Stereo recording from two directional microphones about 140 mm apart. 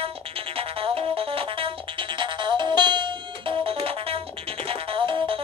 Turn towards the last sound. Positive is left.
turn(degrees=-40)  # may be behind; listen again after turning